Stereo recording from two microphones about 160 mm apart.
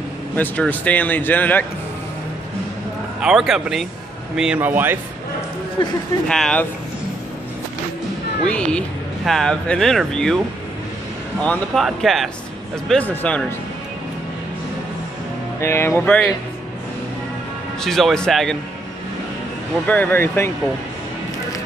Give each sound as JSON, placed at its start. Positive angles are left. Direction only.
{"t": 0.4, "sound": "speech", "side_deg": 10}
{"t": 3.2, "sound": "speech", "side_deg": -5}
{"t": 5.8, "sound": "speech", "side_deg": 30}
{"t": 6.2, "sound": "speech", "side_deg": 5}
{"t": 8.5, "sound": "speech", "side_deg": 5}
{"t": 11.4, "sound": "speech", "side_deg": 0}
{"t": 15.6, "sound": "speech", "side_deg": 15}
{"t": 17.7, "sound": "speech", "side_deg": 0}
{"t": 19.9, "sound": "speech", "side_deg": 10}